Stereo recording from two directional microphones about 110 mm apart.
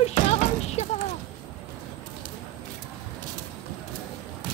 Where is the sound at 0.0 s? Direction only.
75° left (ahead or behind).